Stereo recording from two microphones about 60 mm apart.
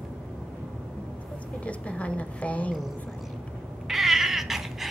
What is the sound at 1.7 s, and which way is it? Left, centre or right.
A woman's voice, left.